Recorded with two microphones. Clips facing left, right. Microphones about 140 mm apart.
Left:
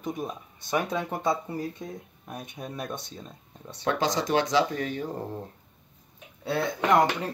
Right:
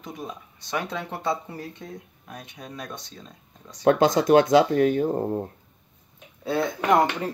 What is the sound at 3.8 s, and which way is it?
Speech, 50° right (ahead or behind).